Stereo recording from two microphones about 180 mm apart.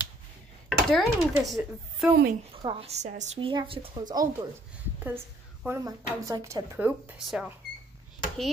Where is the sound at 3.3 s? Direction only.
30° right (ahead or behind).